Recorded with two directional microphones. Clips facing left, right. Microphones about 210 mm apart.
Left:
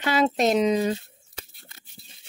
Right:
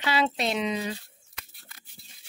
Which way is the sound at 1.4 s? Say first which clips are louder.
Left 5 dB; 25° left (ahead or behind).